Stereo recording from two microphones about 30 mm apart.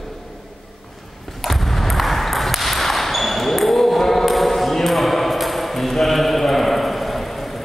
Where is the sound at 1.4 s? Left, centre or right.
Centre.